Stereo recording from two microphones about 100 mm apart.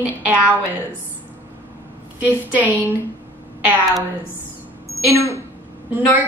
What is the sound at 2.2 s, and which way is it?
Speech, 15° right (ahead or behind).